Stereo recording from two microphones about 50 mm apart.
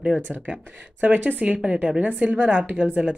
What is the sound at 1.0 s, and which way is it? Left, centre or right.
Speech, right.